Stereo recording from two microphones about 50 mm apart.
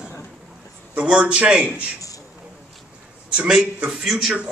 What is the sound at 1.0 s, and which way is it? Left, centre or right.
Speech, centre.